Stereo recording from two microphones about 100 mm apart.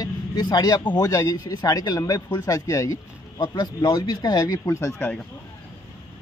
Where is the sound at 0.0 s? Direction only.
45° left (ahead or behind).